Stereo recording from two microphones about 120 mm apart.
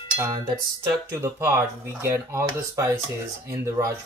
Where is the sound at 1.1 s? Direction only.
25° right (ahead or behind).